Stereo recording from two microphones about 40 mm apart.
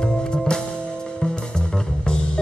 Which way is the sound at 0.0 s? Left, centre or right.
Centre.